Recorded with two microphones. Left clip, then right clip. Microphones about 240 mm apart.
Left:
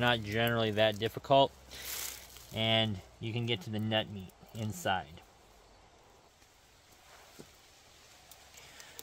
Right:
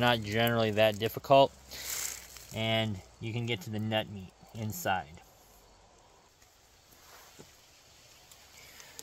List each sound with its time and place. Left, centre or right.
0.0 s speech: right; by 5.1 s centre